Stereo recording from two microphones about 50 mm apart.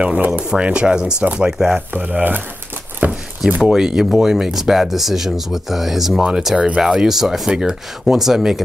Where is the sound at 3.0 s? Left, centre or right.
Right.